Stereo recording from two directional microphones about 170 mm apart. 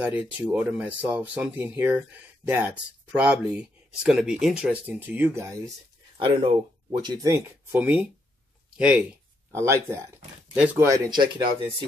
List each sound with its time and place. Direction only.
0.0 s speech: 10° right (ahead or behind)
6.1 s speech: 30° right (ahead or behind)
7.2 s speech: 15° right (ahead or behind)
11.1 s speech: 25° right (ahead or behind)